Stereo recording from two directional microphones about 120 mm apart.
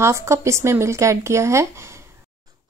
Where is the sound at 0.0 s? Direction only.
25° right (ahead or behind).